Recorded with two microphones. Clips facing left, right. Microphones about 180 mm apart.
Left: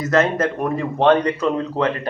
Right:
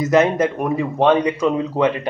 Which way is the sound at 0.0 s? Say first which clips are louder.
Right 3 dB; 15° right (ahead or behind).